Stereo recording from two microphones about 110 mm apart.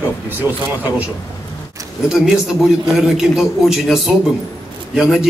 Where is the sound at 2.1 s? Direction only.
5° right (ahead or behind).